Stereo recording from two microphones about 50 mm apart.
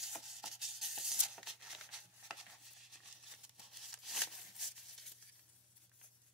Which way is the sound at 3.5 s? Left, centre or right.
Centre.